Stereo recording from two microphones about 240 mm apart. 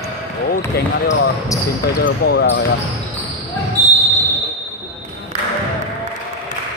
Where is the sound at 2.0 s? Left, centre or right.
Left.